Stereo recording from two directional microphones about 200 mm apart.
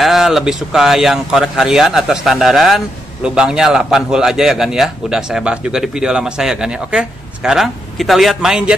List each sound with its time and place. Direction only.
0.0 s speech: centre (ahead or behind)